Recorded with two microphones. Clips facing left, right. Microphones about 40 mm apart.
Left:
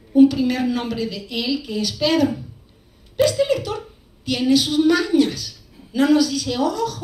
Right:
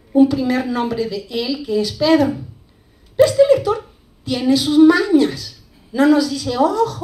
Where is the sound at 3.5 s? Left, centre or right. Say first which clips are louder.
Right 7 dB; right.